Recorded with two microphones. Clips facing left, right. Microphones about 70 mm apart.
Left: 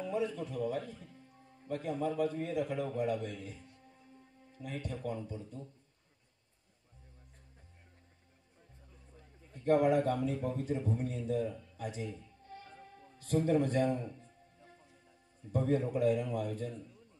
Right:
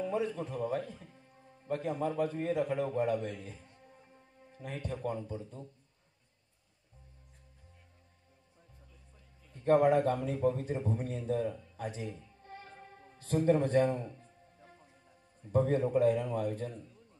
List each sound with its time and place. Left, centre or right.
0.0 s a man's voice: right
9.6 s a man's voice: right
12.1 s music: right
15.5 s a man's voice: right